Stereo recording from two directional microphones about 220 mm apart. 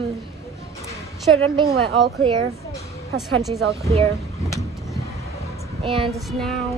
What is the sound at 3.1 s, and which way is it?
Child singing, centre (ahead or behind).